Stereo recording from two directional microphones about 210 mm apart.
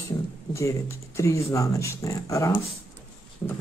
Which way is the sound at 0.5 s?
15° left (ahead or behind).